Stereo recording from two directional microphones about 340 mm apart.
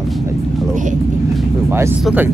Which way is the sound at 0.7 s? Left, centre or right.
Right.